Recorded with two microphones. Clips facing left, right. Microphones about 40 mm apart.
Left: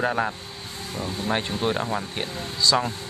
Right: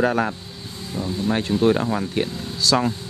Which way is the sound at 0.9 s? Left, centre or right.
Left.